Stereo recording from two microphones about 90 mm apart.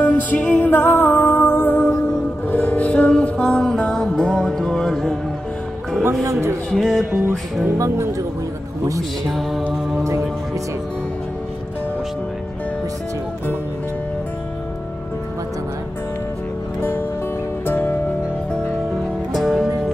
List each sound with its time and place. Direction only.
0.0 s music: 15° left (ahead or behind)
6.7 s music: 5° left (ahead or behind)
7.1 s music: 25° right (ahead or behind)
7.7 s speech: 35° right (ahead or behind)
9.3 s music: centre (ahead or behind)
17.6 s music: 20° left (ahead or behind)
19.3 s music: centre (ahead or behind)